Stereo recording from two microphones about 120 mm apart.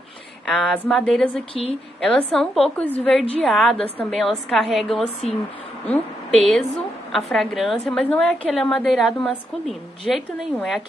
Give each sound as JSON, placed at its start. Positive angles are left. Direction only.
{"t": 0.5, "sound": "a woman's voice", "side_deg": 5}
{"t": 1.5, "sound": "a woman's voice", "side_deg": 55}
{"t": 2.0, "sound": "a woman's voice", "side_deg": 10}
{"t": 3.3, "sound": "a woman's voice", "side_deg": 5}
{"t": 6.3, "sound": "a woman's voice", "side_deg": 0}